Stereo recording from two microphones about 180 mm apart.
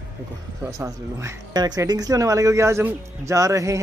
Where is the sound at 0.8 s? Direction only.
15° right (ahead or behind).